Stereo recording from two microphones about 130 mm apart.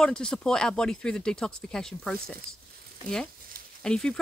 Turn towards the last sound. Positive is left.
turn(degrees=5)  # may be behind; listen again after turning